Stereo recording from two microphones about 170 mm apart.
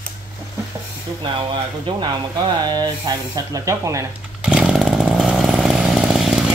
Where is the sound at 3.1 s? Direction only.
20° right (ahead or behind).